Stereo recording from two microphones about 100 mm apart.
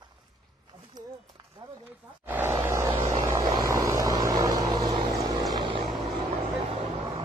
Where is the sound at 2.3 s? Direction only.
25° right (ahead or behind).